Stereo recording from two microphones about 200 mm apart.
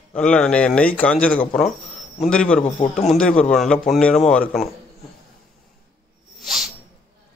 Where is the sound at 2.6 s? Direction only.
30° left (ahead or behind).